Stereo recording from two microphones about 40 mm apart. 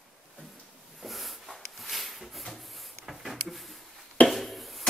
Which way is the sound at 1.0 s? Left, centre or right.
Centre.